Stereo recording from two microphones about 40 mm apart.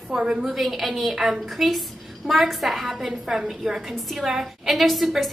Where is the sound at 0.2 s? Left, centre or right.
Right.